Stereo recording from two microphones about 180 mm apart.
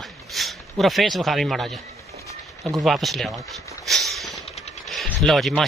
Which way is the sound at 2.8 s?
Centre (ahead or behind).